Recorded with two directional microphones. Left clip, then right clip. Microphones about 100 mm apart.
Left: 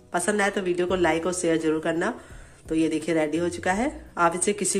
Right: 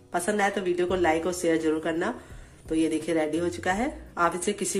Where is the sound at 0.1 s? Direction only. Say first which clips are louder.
Left 2 dB; 25° left (ahead or behind).